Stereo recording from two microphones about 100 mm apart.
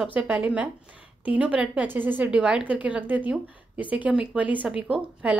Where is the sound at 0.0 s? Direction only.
15° right (ahead or behind).